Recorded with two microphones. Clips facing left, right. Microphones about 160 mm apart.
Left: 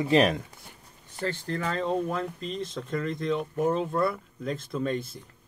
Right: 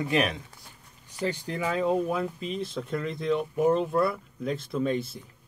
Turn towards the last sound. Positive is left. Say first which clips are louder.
# right 2 dB
turn(degrees=0)  # may be behind; listen again after turning